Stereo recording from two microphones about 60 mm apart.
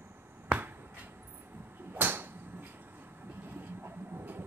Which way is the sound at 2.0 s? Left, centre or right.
Right.